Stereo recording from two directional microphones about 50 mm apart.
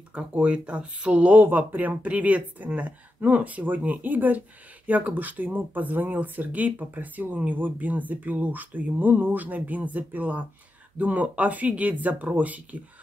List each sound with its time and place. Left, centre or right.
0.1 s speech: right
1.4 s speech: right